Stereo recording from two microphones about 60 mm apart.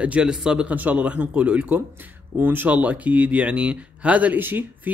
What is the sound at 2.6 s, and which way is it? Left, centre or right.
Speech, right.